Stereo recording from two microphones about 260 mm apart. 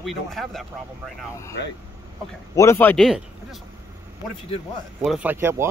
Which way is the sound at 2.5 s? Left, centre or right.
Centre.